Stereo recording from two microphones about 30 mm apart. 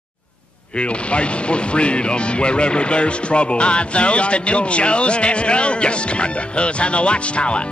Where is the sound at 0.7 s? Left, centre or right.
Left.